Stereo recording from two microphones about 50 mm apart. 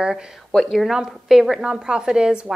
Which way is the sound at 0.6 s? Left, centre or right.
Centre.